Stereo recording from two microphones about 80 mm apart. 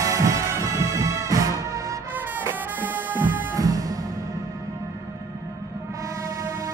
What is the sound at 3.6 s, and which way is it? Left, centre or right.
Music, right.